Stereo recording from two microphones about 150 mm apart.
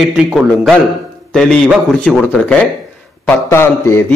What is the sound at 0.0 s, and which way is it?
A man's voice, 5° right (ahead or behind).